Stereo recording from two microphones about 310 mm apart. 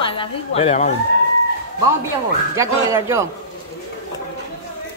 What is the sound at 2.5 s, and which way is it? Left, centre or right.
Speech, centre.